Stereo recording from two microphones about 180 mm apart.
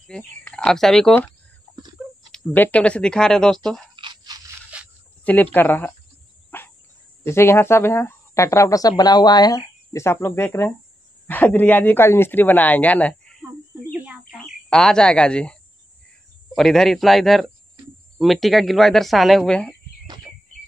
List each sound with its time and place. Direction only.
0.0 s speech: 5° left (ahead or behind)
3.9 s a sound: 25° right (ahead or behind)
4.7 s a sound: 5° right (ahead or behind)
5.2 s speech: 10° left (ahead or behind)
6.5 s cricket: 10° left (ahead or behind)
7.2 s speech: 15° left (ahead or behind)
16.5 s speech: 5° left (ahead or behind)